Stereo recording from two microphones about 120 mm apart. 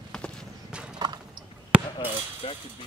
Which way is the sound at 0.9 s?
35° right (ahead or behind).